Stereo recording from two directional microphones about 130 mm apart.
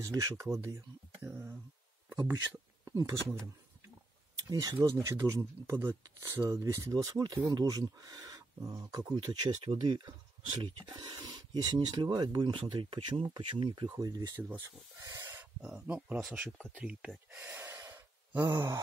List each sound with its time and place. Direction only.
0.0 s speech: 25° right (ahead or behind)
4.4 s speech: 30° right (ahead or behind); by 16.2 s 10° right (ahead or behind)
16.4 s speech: centre (ahead or behind); by 18.8 s 25° right (ahead or behind)